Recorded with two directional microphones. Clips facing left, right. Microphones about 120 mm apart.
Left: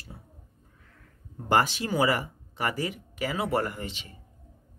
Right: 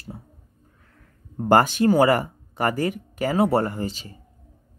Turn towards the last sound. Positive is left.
turn(degrees=-35)  # may be behind; listen again after turning